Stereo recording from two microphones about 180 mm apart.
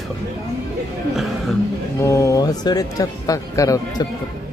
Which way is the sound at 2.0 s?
15° left (ahead or behind).